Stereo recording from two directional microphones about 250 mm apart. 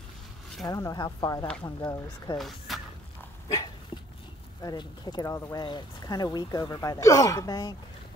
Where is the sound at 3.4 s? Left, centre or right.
Centre.